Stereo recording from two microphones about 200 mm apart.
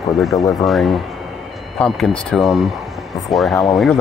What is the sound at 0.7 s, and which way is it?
Speech, centre (ahead or behind).